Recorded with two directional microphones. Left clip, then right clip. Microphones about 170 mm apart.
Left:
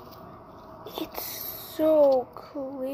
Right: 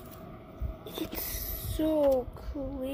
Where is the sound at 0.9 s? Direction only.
20° right (ahead or behind).